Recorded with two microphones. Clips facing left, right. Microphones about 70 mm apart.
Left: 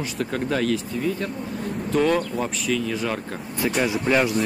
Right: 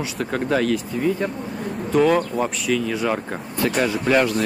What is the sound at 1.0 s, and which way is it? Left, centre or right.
Speech, right.